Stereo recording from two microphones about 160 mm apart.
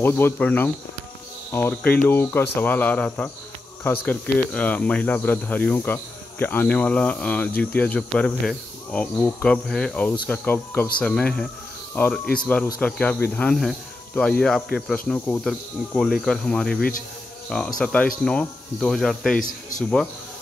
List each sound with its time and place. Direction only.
0.0 s speech: 15° left (ahead or behind)